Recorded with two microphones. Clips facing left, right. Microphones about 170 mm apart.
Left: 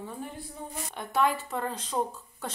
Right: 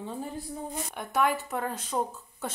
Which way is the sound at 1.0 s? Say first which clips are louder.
Even; centre (ahead or behind).